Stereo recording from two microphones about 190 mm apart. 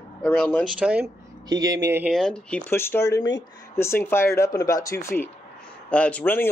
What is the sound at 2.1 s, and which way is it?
Speech, 5° left (ahead or behind).